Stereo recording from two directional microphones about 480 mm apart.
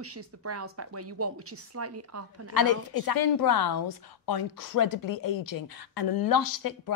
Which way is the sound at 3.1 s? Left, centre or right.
Left.